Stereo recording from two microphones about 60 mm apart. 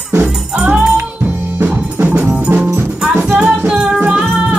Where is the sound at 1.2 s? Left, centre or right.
Right.